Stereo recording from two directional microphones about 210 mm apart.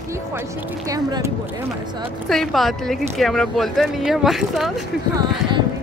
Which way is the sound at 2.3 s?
Centre (ahead or behind).